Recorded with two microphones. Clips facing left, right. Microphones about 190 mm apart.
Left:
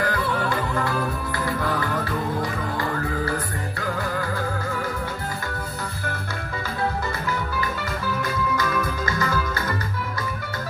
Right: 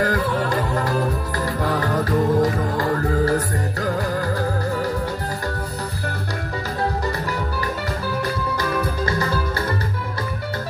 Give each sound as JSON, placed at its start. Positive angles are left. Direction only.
{"t": 0.0, "sound": "music", "side_deg": -40}
{"t": 8.5, "sound": "music", "side_deg": -35}